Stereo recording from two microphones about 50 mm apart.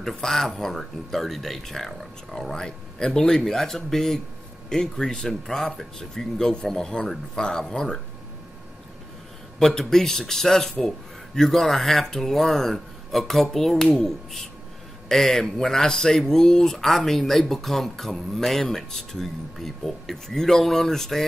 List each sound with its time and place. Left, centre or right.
0.0 s speech: centre
9.6 s speech: centre